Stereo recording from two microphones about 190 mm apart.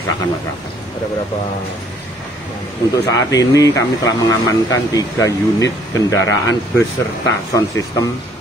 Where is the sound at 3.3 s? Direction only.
15° left (ahead or behind).